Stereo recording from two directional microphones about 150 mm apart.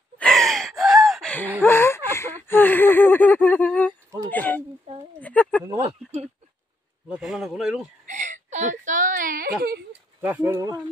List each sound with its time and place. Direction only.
0.2 s gasp: centre (ahead or behind)
1.6 s a sound: 15° left (ahead or behind)
5.8 s a sound: 40° right (ahead or behind)
7.1 s a man's voice: 5° right (ahead or behind)
8.1 s whimper: 55° right (ahead or behind); by 9.8 s 85° right
10.2 s speech: 15° right (ahead or behind)